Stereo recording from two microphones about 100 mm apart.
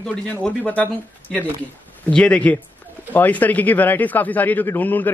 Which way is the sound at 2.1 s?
10° left (ahead or behind).